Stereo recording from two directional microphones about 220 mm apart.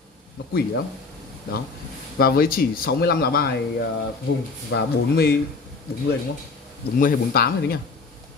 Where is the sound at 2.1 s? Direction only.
45° left (ahead or behind).